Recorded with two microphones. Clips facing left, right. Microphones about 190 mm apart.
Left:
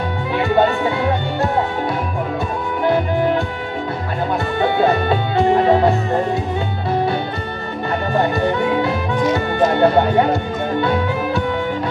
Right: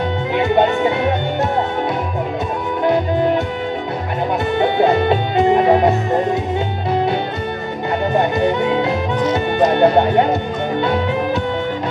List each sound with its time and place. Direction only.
0.4 s music: 20° right (ahead or behind)
4.6 s music: 20° right (ahead or behind)
8.1 s music: 20° right (ahead or behind)